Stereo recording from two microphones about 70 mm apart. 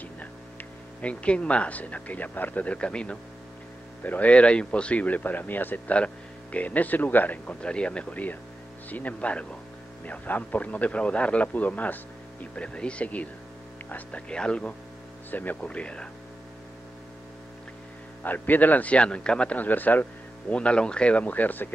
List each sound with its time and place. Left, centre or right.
0.0 s speech: left
18.2 s speech: left